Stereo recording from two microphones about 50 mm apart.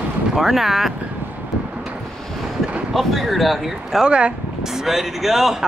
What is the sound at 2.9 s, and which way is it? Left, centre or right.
Speech, centre.